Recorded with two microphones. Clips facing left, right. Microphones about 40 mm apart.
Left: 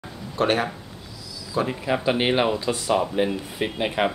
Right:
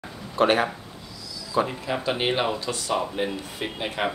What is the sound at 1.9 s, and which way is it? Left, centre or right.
A man's voice, centre.